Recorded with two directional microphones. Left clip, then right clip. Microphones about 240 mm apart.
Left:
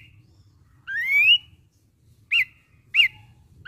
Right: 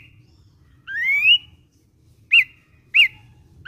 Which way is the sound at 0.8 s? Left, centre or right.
Centre.